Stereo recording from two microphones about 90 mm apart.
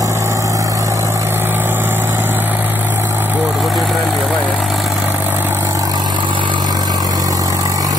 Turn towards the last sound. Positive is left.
turn(degrees=-40)  # may be behind; listen again after turning